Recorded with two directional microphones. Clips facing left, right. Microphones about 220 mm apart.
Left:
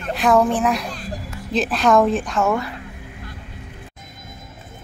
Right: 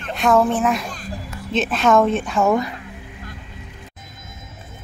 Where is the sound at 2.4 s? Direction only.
15° right (ahead or behind).